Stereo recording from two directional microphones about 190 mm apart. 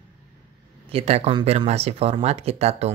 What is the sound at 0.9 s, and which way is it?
Speech, 35° right (ahead or behind).